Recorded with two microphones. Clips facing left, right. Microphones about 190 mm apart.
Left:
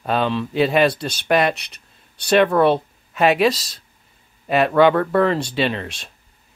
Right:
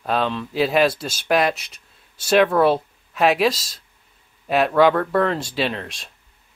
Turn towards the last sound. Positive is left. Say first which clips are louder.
# left 2 dB
turn(degrees=0)  # may be behind; listen again after turning